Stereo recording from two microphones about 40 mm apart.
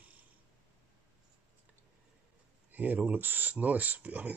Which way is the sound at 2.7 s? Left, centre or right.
Right.